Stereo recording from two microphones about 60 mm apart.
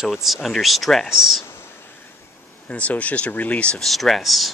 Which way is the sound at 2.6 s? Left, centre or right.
Left.